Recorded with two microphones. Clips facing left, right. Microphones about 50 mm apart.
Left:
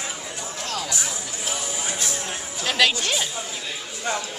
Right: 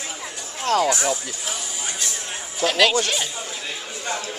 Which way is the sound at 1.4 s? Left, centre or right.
Centre.